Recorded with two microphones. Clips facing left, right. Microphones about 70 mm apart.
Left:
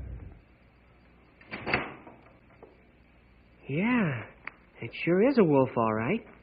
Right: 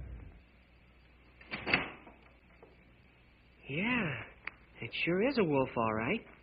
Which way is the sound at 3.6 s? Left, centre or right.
Left.